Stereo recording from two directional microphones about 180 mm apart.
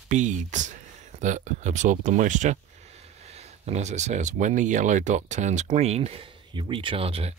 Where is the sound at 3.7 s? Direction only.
40° right (ahead or behind).